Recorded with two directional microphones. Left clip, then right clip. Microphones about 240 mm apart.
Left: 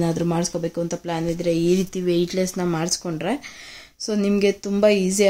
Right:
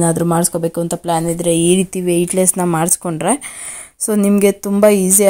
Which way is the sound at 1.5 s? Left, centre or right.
Right.